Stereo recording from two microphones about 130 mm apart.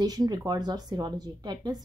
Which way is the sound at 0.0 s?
30° right (ahead or behind).